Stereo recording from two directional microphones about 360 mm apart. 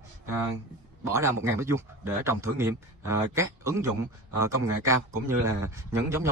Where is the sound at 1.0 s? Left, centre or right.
Centre.